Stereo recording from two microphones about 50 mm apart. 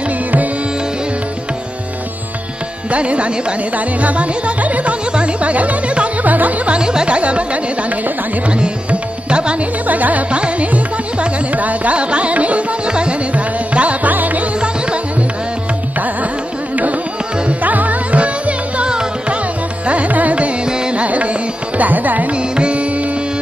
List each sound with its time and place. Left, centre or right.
2.9 s speech: right
5.1 s music: right
6.8 s speech: centre
8.5 s speech: right
9.3 s music: right
9.8 s music: right
14.6 s music: right
17.5 s music: right
19.9 s carnatic music: right
20.6 s music: centre
21.0 s music: right
22.3 s music: right